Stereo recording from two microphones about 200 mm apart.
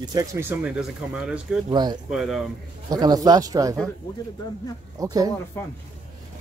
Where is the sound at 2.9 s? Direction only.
20° right (ahead or behind).